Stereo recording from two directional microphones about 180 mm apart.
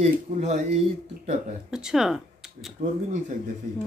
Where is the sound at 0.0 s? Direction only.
40° right (ahead or behind).